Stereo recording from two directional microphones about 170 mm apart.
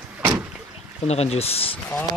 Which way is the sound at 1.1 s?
40° left (ahead or behind).